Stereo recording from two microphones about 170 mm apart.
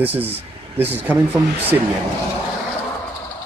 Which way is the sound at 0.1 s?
35° right (ahead or behind).